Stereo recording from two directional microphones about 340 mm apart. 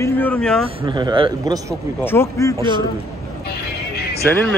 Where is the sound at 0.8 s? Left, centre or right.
Centre.